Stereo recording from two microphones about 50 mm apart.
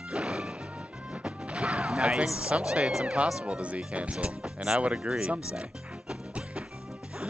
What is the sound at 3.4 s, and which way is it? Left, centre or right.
Speech, right.